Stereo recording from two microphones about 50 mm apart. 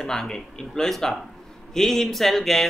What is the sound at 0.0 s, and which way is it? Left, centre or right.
Speech, centre.